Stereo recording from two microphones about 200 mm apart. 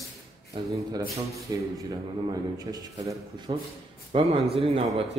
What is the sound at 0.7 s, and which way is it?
A man's voice, 15° right (ahead or behind).